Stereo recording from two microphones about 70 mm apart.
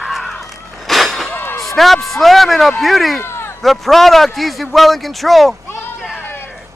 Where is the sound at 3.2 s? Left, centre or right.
Left.